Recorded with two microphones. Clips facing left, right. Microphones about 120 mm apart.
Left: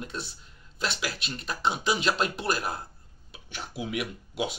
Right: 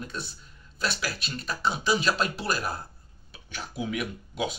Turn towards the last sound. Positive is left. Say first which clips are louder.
# even
turn(degrees=20)  # may be behind; listen again after turning